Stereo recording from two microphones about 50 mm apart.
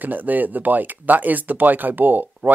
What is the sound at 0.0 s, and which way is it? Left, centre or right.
Speech, right.